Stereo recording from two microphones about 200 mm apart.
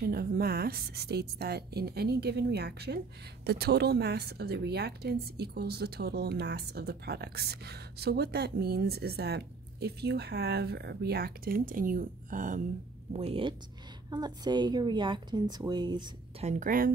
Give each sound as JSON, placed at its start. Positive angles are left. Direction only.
{"t": 0.0, "sound": "a woman's voice", "side_deg": -50}
{"t": 13.1, "sound": "a woman's voice", "side_deg": -30}
{"t": 16.4, "sound": "a woman's voice", "side_deg": -40}